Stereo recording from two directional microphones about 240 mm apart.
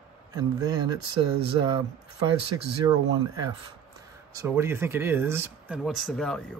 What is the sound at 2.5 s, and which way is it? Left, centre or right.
Speech, centre.